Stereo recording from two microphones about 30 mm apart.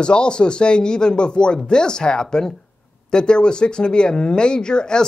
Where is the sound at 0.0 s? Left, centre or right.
Left.